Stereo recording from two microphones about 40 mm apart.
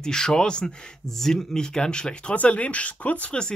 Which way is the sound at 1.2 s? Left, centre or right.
Centre.